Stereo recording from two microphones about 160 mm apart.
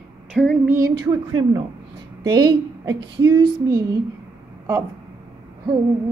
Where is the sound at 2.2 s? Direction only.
25° right (ahead or behind).